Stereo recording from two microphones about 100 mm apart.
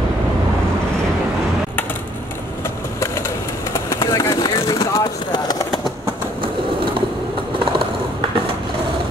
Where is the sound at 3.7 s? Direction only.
30° left (ahead or behind).